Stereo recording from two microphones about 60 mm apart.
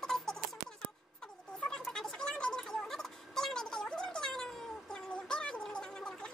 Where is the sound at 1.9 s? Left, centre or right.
Centre.